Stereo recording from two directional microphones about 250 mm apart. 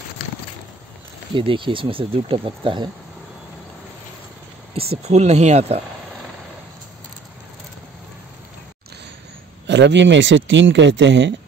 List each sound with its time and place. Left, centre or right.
1.3 s speech: centre
4.7 s speech: right
9.7 s speech: right